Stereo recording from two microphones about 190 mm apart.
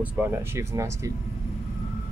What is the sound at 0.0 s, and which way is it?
Speech, 10° right (ahead or behind).